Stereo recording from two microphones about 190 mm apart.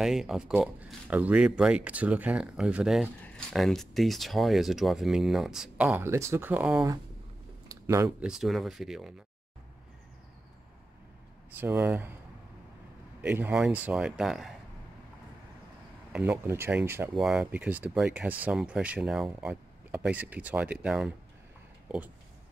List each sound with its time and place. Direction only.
0.0 s speech: centre (ahead or behind)
7.6 s a sound: 20° right (ahead or behind)
8.2 s speech: centre (ahead or behind)
11.5 s speech: 10° right (ahead or behind)
13.2 s speech: 5° right (ahead or behind)
16.1 s speech: 5° right (ahead or behind)